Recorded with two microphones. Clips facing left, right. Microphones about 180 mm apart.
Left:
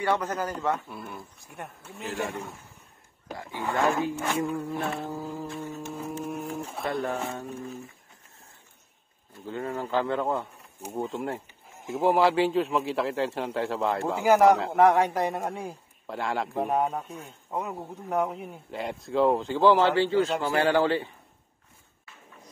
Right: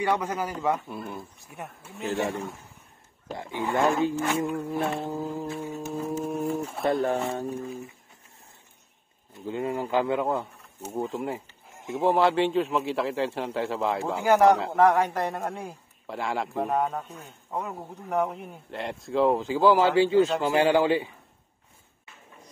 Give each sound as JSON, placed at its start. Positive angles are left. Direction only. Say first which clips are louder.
{"t": 0.0, "sound": "a man's voice", "louder": "even", "side_deg": -10}
{"t": 0.9, "sound": "speech", "louder": "right 4 dB", "side_deg": -20}
{"t": 1.4, "sound": "a man's voice", "louder": "right 1 dB", "side_deg": 0}
{"t": 3.3, "sound": "speech", "louder": "right 3 dB", "side_deg": -20}
{"t": 5.1, "sound": "a man's voice", "louder": "right 3 dB", "side_deg": -10}
{"t": 6.9, "sound": "speech", "louder": "right 5 dB", "side_deg": -35}
{"t": 9.3, "sound": "a man's voice", "louder": "right 3 dB", "side_deg": -15}
{"t": 14.8, "sound": "a man's voice", "louder": "left 1 dB", "side_deg": 10}